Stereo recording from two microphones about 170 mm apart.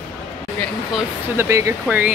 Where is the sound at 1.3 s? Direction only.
15° right (ahead or behind).